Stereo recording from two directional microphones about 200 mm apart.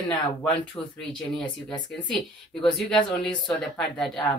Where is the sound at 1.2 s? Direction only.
5° left (ahead or behind).